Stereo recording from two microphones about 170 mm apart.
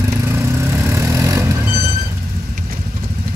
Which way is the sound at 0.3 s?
15° right (ahead or behind).